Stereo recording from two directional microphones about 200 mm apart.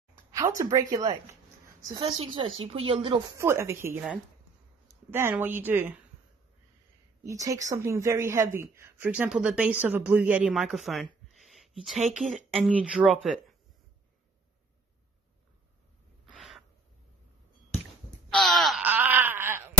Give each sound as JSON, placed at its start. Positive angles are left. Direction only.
{"t": 0.1, "sound": "a sound", "side_deg": -15}
{"t": 1.8, "sound": "a woman's voice", "side_deg": -25}
{"t": 3.3, "sound": "speech", "side_deg": -15}
{"t": 7.2, "sound": "speech", "side_deg": -15}
{"t": 12.3, "sound": "speech", "side_deg": -35}
{"t": 12.6, "sound": "speech", "side_deg": -5}
{"t": 16.3, "sound": "owl", "side_deg": 0}
{"t": 18.3, "sound": "wail", "side_deg": 0}